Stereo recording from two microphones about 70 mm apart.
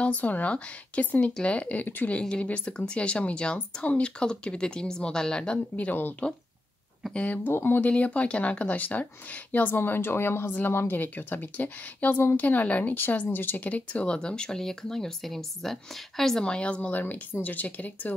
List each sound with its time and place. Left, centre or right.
0.0 s speech: left
2.1 s speech: centre
7.2 s speech: left
7.9 s speech: centre
9.8 s speech: left; by 17.0 s centre
17.0 s speech: left